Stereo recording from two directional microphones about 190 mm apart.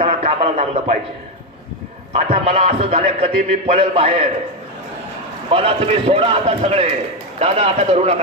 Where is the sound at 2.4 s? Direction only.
35° right (ahead or behind).